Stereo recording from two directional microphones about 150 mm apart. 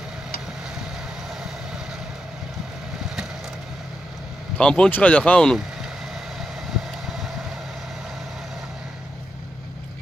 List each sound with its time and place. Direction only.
4.6 s speech: 5° left (ahead or behind)